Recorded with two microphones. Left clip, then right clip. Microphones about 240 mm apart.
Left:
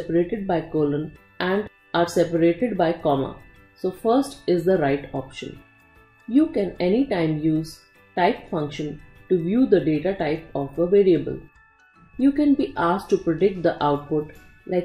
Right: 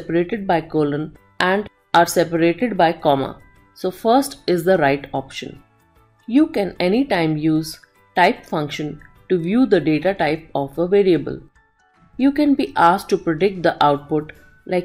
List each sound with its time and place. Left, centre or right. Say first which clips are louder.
0.1 s speech: right 4 dB; centre